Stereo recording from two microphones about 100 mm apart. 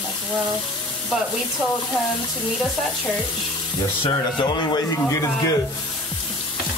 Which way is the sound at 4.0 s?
50° left (ahead or behind).